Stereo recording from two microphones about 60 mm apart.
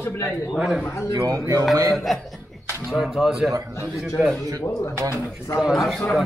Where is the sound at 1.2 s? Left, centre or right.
Right.